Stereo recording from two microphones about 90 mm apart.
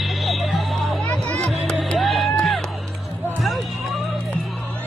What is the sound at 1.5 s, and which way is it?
Music, centre (ahead or behind).